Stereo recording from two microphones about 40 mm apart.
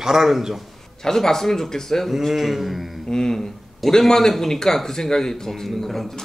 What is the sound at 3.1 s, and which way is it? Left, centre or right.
A man's voice, centre.